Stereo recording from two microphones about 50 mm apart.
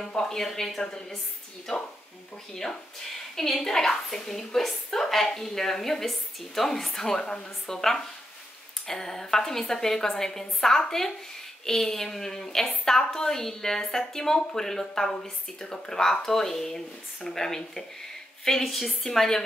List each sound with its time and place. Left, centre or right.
0.0 s a woman's voice: centre